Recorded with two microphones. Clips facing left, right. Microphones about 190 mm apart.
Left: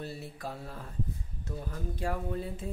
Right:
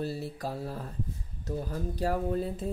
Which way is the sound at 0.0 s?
35° right (ahead or behind).